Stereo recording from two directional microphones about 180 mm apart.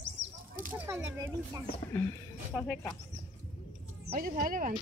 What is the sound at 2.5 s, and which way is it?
Speech, 5° right (ahead or behind).